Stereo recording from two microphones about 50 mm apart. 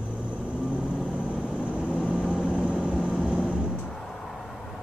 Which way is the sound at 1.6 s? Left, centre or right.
Right.